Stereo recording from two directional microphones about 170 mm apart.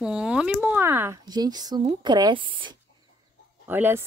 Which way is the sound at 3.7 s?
10° right (ahead or behind).